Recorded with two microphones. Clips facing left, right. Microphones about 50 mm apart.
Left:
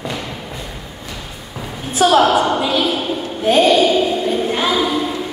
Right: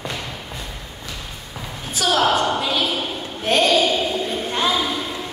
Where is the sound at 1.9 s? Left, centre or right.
Left.